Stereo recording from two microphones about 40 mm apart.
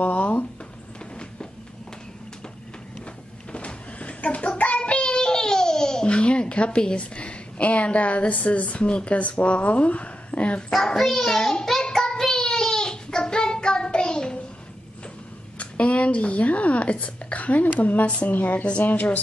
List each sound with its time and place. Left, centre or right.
0.0 s a sound: left
3.5 s a sound: left
4.8 s babbling: left
11.0 s a child's voice: centre
11.9 s child singing: centre
15.6 s speech: left